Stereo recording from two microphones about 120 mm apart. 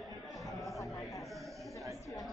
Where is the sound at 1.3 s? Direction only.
Centre (ahead or behind).